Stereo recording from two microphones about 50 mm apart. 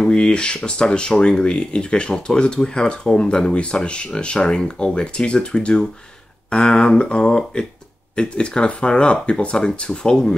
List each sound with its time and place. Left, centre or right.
0.0 s speech: centre